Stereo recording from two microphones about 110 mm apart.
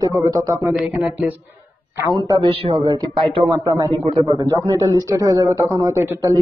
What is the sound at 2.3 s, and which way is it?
Speech, 55° right (ahead or behind).